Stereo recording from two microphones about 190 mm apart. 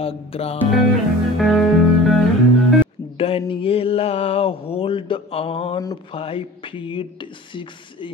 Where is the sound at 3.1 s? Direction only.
30° left (ahead or behind).